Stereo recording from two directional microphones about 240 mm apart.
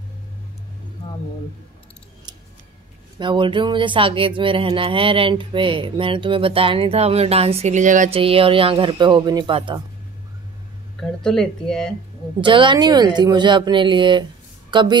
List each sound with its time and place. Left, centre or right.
3.2 s speech: centre
11.0 s speech: centre
12.4 s a woman's voice: centre